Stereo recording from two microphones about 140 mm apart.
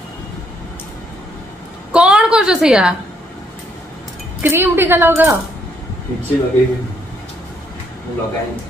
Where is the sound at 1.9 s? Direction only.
5° right (ahead or behind).